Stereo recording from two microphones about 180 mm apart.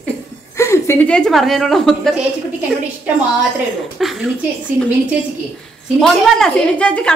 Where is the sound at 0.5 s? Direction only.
15° left (ahead or behind).